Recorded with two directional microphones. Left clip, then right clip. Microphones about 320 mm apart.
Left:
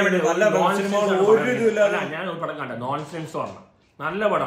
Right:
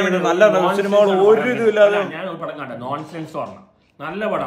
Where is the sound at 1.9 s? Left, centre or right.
Centre.